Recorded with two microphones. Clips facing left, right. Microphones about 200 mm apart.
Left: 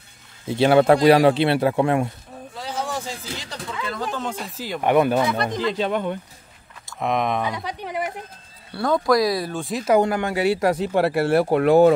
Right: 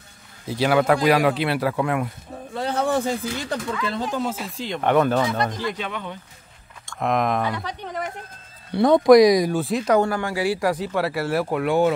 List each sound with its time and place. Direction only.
0.5 s a man's voice: 25° left (ahead or behind)
2.5 s speech: 60° right (ahead or behind)
3.8 s speech: 30° right (ahead or behind)
4.1 s a man's voice: 5° right (ahead or behind); by 5.8 s 20° left (ahead or behind)
5.8 s speech: 45° left (ahead or behind)
6.9 s speech: centre (ahead or behind)
7.4 s speech: 10° left (ahead or behind)
8.7 s speech: 20° right (ahead or behind); by 10.0 s 5° left (ahead or behind)
10.0 s a man's voice: 20° left (ahead or behind)
11.0 s speech: 55° left (ahead or behind)
11.2 s speech: 35° left (ahead or behind)